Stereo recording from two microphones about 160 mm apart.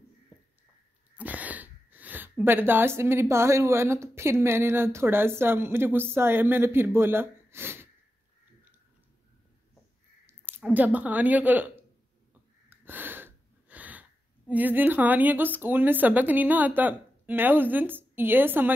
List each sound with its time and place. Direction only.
0.3 s a sound: 30° left (ahead or behind)
1.1 s speech: 10° right (ahead or behind)
10.2 s speech: 10° right (ahead or behind)
12.6 s gasp: 10° right (ahead or behind)
14.5 s speech: 10° right (ahead or behind)